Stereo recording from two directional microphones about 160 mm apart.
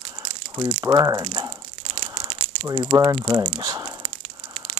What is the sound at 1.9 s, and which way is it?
Crumpling, 35° right (ahead or behind).